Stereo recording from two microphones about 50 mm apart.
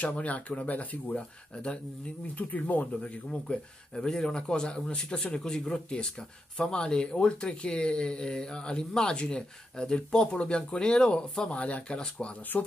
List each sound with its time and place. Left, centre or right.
0.0 s speech: left
3.3 s speech: centre